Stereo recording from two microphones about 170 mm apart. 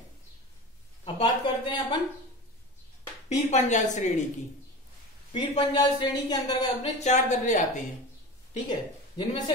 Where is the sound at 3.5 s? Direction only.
45° left (ahead or behind).